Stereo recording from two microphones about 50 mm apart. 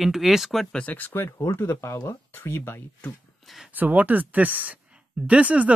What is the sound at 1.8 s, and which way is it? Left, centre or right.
Speech, left.